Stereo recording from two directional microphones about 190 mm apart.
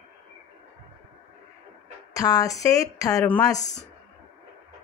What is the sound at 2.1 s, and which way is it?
Speech, 20° left (ahead or behind).